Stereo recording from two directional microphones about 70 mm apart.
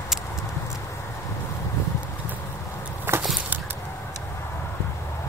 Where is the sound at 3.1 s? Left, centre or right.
Right.